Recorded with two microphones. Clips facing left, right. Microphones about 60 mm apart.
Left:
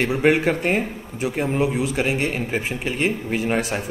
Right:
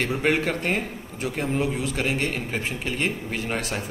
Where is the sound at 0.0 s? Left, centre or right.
Centre.